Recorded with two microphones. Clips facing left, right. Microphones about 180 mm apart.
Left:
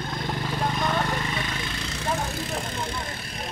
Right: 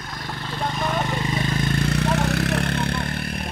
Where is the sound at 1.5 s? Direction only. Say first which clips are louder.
Right 10 dB; 45° right (ahead or behind).